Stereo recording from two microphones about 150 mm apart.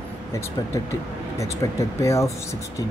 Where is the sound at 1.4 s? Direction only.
20° left (ahead or behind).